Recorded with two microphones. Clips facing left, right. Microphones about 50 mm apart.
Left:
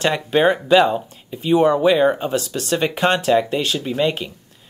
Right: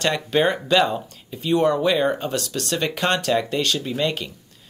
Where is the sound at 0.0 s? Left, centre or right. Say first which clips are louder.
Left 3 dB; centre.